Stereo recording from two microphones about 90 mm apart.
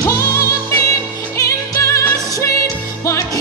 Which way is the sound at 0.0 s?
35° left (ahead or behind).